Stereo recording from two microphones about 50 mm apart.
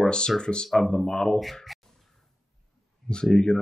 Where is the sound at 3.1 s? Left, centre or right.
Centre.